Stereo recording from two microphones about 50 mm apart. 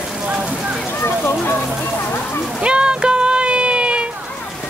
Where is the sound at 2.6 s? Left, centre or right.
Centre.